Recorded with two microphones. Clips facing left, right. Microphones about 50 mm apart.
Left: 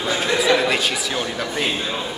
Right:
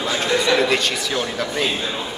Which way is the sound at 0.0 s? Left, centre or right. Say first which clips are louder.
Even; centre.